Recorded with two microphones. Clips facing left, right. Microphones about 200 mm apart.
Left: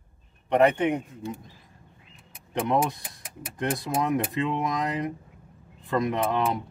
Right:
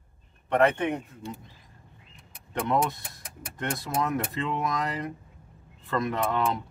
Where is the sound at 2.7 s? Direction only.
15° left (ahead or behind).